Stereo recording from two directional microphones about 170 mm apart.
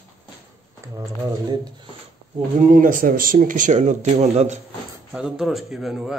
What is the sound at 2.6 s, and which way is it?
Speech, 50° right (ahead or behind).